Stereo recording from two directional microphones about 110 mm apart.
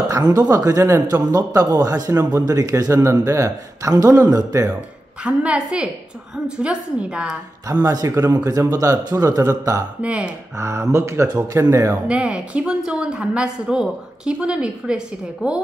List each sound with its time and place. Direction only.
0.1 s a man's voice: 35° right (ahead or behind)
5.2 s a woman's voice: 10° right (ahead or behind)
7.8 s a man's voice: 35° right (ahead or behind)
10.0 s a woman's voice: 10° right (ahead or behind)
10.6 s speech: 25° right (ahead or behind)
12.1 s a woman's voice: 5° right (ahead or behind)